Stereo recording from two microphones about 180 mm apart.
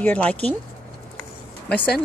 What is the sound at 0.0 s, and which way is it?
Speech, 5° left (ahead or behind).